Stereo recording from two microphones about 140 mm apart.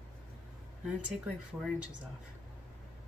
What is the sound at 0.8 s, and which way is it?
Speech, 5° right (ahead or behind).